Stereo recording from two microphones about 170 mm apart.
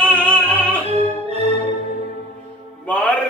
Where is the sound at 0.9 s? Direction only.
40° right (ahead or behind).